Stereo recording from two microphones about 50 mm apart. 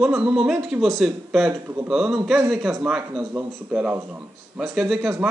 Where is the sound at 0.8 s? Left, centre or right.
Centre.